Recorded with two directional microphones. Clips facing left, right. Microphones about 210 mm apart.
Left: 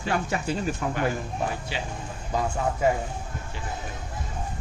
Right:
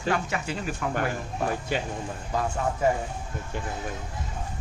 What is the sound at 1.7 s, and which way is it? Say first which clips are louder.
Speech: right 4 dB; 50° right (ahead or behind).